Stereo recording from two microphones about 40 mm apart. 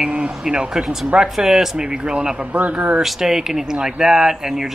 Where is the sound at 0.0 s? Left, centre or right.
Right.